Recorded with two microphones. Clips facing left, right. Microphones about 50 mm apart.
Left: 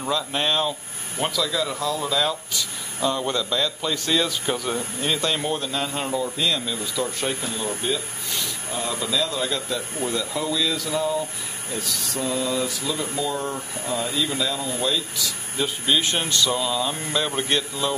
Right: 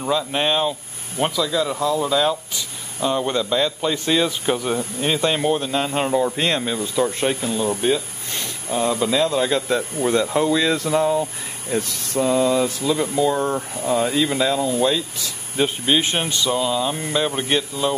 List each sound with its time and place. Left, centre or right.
0.0 s speech: centre